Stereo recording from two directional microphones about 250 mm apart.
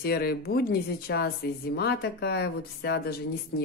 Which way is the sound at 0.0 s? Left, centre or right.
Left.